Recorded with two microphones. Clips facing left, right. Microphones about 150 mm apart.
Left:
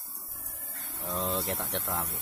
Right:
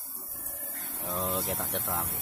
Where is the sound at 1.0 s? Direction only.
Centre (ahead or behind).